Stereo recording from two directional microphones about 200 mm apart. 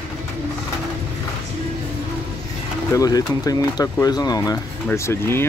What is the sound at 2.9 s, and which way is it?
Speech, 15° left (ahead or behind).